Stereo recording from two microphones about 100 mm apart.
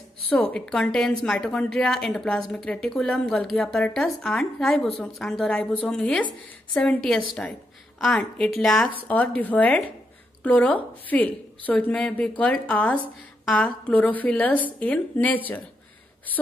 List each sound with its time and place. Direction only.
0.3 s a woman's voice: 10° left (ahead or behind)